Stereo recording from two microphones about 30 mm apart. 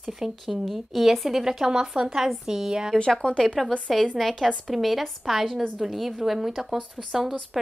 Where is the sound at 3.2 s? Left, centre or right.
Left.